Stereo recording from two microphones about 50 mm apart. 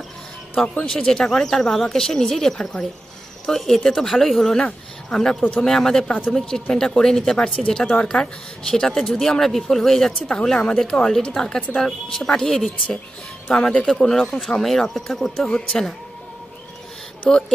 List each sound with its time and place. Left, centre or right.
0.6 s speech: centre
4.6 s speech: centre
6.0 s speech: left
6.3 s speech: centre
13.5 s speech: left
13.8 s speech: centre
15.4 s speech: centre
17.3 s speech: centre